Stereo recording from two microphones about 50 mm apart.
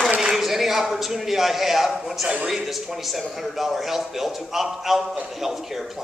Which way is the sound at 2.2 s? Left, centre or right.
Centre.